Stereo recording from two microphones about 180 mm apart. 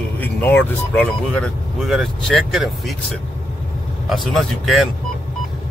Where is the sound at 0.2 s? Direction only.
10° left (ahead or behind).